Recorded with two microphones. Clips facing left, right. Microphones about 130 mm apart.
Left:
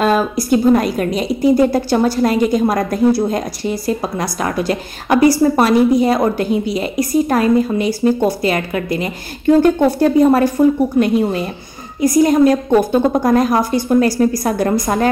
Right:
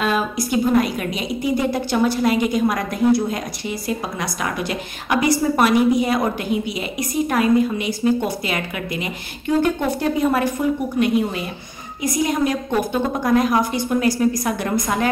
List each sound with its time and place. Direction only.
0.0 s a woman's voice: 40° left (ahead or behind)